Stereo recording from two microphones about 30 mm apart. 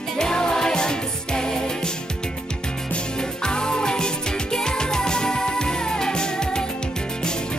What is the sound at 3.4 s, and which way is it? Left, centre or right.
Music, left.